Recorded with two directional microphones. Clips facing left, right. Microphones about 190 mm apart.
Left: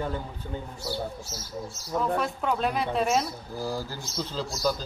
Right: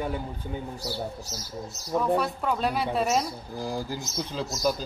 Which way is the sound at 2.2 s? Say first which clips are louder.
Even; centre (ahead or behind).